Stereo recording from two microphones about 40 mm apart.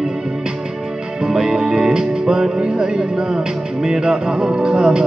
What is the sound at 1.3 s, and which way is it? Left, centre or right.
Music, centre.